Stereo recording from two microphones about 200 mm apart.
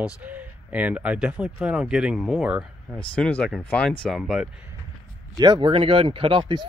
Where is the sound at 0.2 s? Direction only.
10° right (ahead or behind).